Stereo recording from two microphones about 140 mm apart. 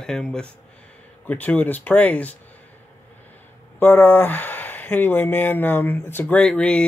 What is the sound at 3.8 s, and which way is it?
Speech, 15° left (ahead or behind).